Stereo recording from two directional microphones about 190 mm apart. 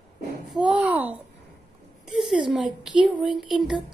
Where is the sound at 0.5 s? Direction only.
5° right (ahead or behind).